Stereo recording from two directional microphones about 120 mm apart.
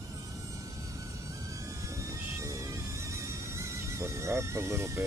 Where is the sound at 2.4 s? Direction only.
25° right (ahead or behind).